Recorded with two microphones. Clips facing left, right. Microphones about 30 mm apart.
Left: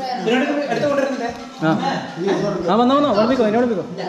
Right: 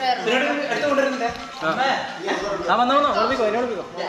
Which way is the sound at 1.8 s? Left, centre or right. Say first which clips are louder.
Right 1 dB; right.